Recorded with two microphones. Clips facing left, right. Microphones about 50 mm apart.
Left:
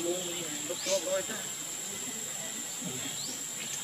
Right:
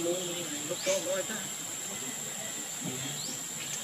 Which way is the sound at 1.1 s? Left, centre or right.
Centre.